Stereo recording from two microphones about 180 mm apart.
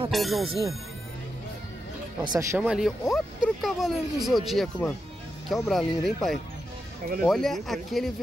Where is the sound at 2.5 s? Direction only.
5° right (ahead or behind).